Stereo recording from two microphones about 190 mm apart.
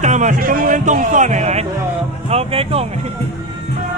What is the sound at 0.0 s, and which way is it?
A man's voice, 40° right (ahead or behind).